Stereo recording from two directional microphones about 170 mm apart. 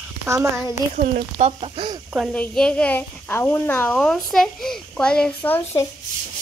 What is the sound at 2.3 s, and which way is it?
A child's voice, 5° left (ahead or behind).